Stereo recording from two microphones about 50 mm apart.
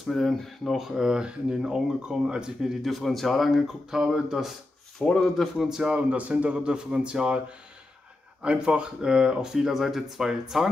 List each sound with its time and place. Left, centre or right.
0.0 s speech: centre
0.7 s speech: centre
2.8 s speech: centre
5.0 s speech: centre
5.7 s speech: centre
5.9 s a man's voice: right
6.5 s a man's voice: centre